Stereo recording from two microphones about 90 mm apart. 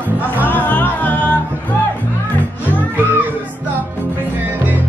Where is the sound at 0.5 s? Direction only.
20° left (ahead or behind).